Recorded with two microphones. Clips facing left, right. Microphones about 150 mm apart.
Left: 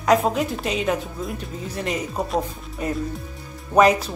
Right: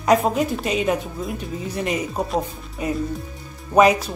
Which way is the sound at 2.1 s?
5° right (ahead or behind).